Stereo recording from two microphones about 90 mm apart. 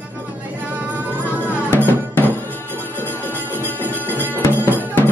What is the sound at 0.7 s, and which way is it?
Music, 20° right (ahead or behind).